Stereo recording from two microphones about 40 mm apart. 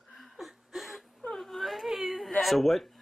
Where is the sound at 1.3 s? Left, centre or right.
Centre.